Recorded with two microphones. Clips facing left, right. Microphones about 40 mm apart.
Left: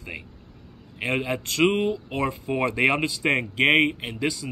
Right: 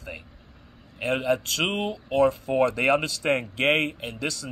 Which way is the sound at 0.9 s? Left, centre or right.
Left.